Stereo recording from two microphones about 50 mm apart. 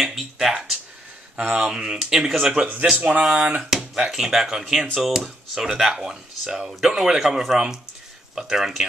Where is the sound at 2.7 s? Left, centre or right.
Right.